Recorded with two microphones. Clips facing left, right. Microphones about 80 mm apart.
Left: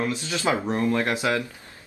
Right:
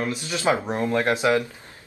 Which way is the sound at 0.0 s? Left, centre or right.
Right.